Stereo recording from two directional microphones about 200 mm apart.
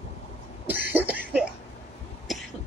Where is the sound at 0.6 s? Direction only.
10° right (ahead or behind).